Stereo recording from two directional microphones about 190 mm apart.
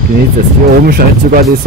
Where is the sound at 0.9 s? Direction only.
50° right (ahead or behind).